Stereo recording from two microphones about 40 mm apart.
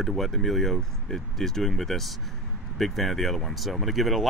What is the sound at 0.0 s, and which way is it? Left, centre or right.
Speech, centre.